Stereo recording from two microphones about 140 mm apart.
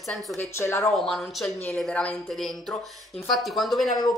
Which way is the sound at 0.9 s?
Centre (ahead or behind).